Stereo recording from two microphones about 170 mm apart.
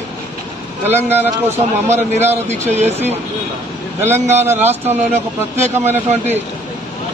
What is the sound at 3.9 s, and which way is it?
A man's voice, 15° right (ahead or behind).